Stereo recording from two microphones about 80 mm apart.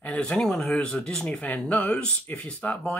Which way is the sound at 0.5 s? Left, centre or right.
Centre.